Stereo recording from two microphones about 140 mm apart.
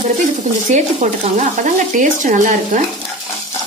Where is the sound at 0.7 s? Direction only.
60° right (ahead or behind).